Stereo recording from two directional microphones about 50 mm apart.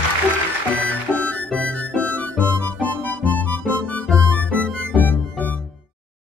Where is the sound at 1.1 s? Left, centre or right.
Left.